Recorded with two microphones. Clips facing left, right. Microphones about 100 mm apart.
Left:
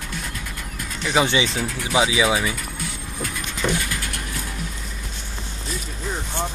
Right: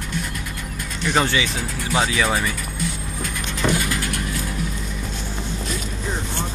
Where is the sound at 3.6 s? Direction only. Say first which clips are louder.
Right 2 dB; 45° right (ahead or behind).